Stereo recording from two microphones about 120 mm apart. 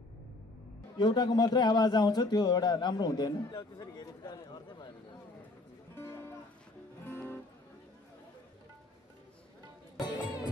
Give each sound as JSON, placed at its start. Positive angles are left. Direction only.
{"t": 0.9, "sound": "a man's voice", "side_deg": 35}
{"t": 5.9, "sound": "music", "side_deg": 20}
{"t": 9.9, "sound": "music", "side_deg": 35}